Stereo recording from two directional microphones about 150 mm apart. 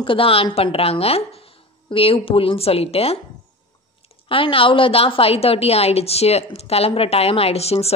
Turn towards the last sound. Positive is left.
turn(degrees=45)  # may be behind; listen again after turning